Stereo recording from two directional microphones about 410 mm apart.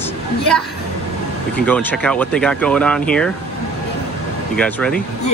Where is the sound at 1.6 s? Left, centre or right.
Centre.